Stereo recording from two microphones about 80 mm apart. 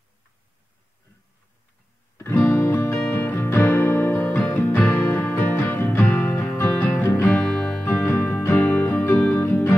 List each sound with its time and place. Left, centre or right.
2.1 s music: left
7.5 s music: centre